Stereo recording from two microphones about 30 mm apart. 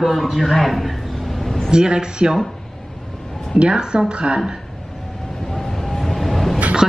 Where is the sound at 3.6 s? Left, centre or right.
Right.